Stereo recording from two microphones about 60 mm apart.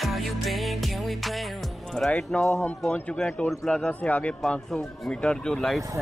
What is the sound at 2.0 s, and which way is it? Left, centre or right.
Speech, centre.